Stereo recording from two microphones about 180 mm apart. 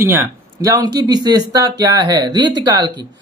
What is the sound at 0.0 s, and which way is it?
Speech, 15° right (ahead or behind).